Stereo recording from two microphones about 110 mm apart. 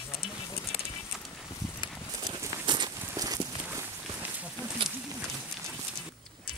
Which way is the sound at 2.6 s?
45° right (ahead or behind).